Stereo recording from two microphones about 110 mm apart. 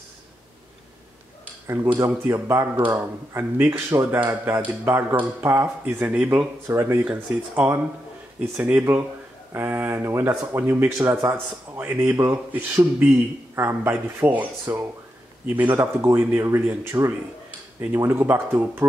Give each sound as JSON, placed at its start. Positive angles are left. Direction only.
{"t": 2.0, "sound": "speech", "side_deg": -25}